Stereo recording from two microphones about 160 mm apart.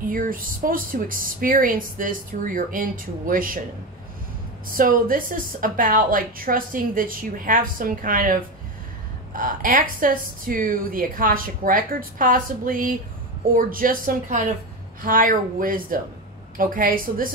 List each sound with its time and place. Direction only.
0.0 s a woman's voice: 60° right (ahead or behind)
4.6 s a woman's voice: 60° right (ahead or behind)